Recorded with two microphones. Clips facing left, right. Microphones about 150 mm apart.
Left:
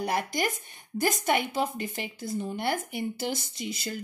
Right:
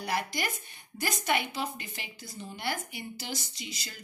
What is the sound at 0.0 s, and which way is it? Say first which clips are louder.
A woman's voice: left 4 dB; 45° left (ahead or behind).